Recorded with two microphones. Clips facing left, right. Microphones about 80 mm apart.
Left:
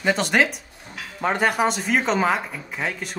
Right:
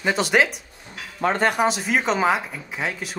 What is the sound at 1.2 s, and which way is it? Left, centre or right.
Speech, centre.